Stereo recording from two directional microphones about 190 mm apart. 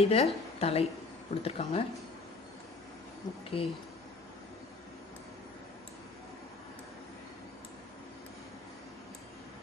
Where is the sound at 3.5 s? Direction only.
30° left (ahead or behind).